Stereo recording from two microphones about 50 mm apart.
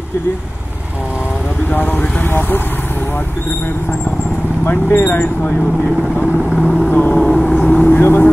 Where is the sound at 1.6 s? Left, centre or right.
Left.